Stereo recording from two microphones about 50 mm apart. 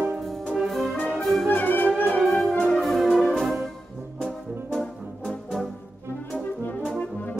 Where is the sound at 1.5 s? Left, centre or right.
Left.